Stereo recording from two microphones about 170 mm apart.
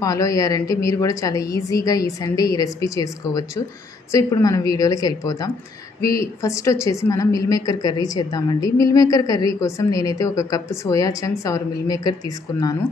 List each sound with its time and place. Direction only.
0.0 s a woman's voice: 20° left (ahead or behind)